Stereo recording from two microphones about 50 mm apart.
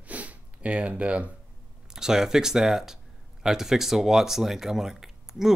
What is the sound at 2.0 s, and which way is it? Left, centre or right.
Speech, centre.